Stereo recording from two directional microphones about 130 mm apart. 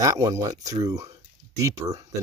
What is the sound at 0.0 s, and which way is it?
Speech, 25° right (ahead or behind).